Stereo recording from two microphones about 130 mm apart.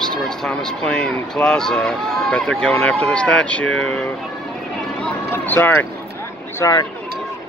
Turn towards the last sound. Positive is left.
turn(degrees=25)  # may be behind; listen again after turning